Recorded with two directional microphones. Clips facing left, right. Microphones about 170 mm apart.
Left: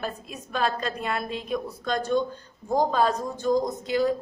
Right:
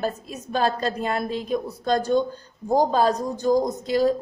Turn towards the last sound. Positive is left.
turn(degrees=-40)  # may be behind; listen again after turning